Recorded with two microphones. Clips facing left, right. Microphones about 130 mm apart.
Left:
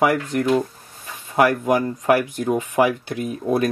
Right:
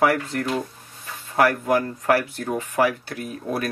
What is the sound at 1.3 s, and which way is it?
Speech, 15° left (ahead or behind).